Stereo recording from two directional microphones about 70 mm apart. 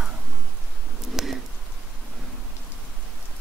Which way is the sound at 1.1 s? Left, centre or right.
Centre.